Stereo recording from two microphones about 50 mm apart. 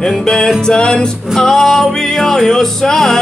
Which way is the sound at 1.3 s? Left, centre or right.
Centre.